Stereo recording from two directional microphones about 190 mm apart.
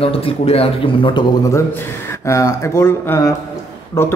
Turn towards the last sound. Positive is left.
turn(degrees=15)  # may be behind; listen again after turning